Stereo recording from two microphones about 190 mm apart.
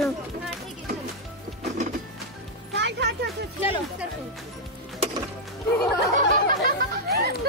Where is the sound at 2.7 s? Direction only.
60° right (ahead or behind).